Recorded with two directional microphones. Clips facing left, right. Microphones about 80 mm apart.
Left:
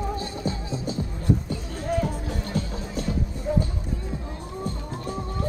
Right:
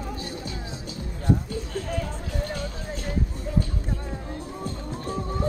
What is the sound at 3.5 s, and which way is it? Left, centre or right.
Music, left.